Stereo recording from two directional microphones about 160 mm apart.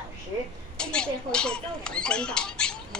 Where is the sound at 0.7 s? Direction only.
5° left (ahead or behind).